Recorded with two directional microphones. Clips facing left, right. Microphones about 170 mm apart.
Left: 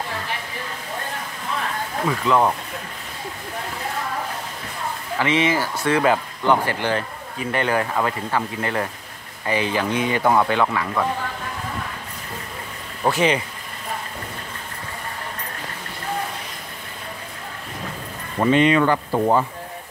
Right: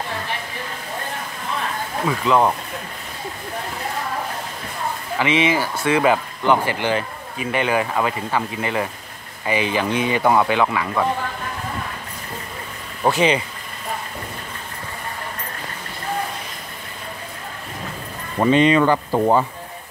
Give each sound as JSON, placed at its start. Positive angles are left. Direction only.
{"t": 2.0, "sound": "speech", "side_deg": -15}
{"t": 5.2, "sound": "speech", "side_deg": -15}
{"t": 13.0, "sound": "speech", "side_deg": -20}
{"t": 18.4, "sound": "speech", "side_deg": -25}